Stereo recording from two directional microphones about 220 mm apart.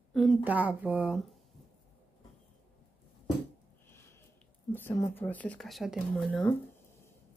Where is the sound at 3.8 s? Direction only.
10° left (ahead or behind).